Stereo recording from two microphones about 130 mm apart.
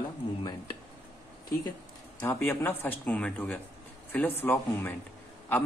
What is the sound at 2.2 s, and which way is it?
A man's voice, 20° left (ahead or behind).